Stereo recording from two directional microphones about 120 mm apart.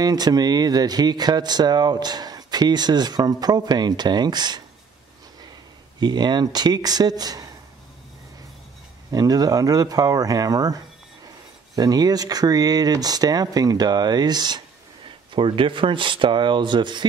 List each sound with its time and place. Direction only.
0.0 s speech: 35° right (ahead or behind)
5.9 s speech: 35° right (ahead or behind)
9.1 s speech: 30° right (ahead or behind)